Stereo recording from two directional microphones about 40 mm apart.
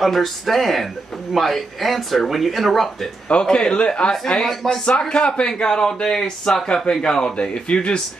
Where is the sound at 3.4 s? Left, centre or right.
Centre.